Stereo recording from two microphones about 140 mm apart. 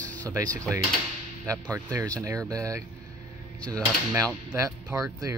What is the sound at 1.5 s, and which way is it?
Speech, 25° right (ahead or behind).